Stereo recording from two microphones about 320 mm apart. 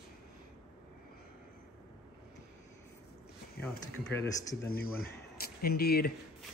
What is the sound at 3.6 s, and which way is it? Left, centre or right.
Speech, centre.